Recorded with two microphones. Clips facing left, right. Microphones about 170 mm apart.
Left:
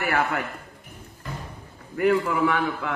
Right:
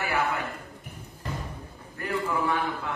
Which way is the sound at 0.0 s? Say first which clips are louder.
Left 3 dB; 70° left (ahead or behind).